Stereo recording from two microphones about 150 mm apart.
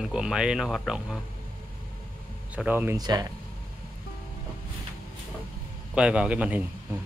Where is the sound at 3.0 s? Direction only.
25° right (ahead or behind).